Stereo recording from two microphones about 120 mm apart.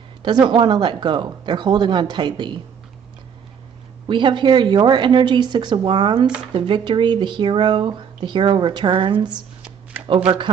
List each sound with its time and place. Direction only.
0.2 s speech: 40° right (ahead or behind)
4.1 s a man's voice: 45° right (ahead or behind)